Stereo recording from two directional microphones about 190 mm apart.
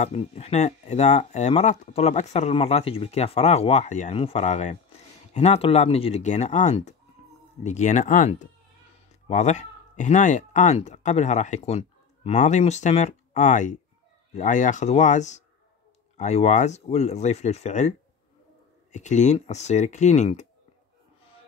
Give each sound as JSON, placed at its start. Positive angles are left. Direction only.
{"t": 0.0, "sound": "speech", "side_deg": 30}